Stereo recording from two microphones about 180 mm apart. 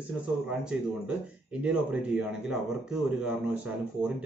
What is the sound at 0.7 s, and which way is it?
Speech, 5° right (ahead or behind).